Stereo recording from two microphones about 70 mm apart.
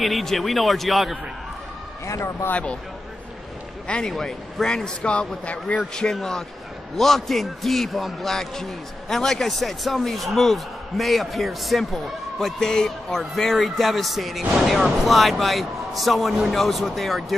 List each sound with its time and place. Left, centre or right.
0.0 s a man's voice: centre
2.0 s speech: left
3.8 s a man's voice: centre
6.0 s a man's voice: centre